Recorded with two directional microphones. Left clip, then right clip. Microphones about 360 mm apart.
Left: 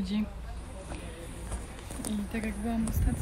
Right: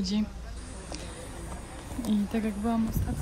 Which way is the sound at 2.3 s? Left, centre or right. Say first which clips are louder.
Right 2 dB; centre.